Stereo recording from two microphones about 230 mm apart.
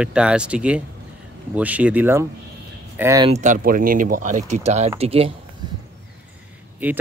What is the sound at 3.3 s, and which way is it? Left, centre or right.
Speech, right.